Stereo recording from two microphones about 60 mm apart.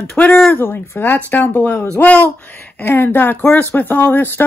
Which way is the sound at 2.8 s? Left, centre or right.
Left.